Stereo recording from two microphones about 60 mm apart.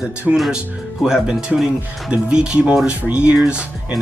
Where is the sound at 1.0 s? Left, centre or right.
Centre.